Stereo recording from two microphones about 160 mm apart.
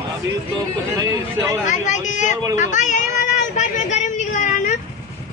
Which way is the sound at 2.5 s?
50° left (ahead or behind).